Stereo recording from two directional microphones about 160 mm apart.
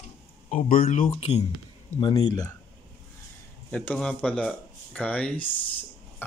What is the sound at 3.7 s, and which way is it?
Speech, 5° left (ahead or behind).